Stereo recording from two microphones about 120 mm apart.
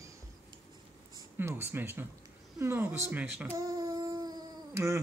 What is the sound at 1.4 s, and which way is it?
Speech, 20° right (ahead or behind).